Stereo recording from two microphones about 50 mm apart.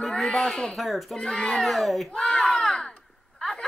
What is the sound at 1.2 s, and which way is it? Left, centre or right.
Speech, centre.